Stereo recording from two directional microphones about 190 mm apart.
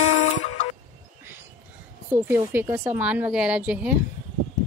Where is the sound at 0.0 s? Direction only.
35° left (ahead or behind).